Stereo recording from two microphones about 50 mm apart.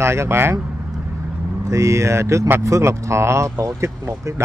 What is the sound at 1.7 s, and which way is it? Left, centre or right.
Speech, right.